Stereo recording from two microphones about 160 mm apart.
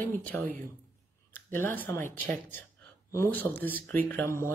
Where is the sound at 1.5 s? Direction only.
10° left (ahead or behind).